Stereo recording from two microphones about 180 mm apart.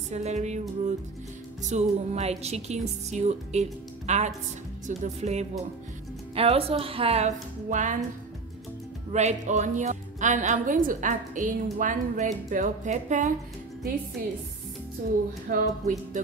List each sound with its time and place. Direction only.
0.1 s a woman's voice: 40° right (ahead or behind)
9.1 s a woman's voice: 40° right (ahead or behind)
15.5 s a woman's voice: 45° right (ahead or behind)